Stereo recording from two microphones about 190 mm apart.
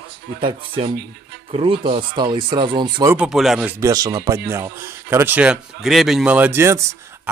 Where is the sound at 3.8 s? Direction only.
20° right (ahead or behind).